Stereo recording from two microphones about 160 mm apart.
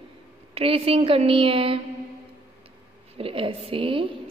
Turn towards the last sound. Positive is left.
turn(degrees=-35)  # may be behind; listen again after turning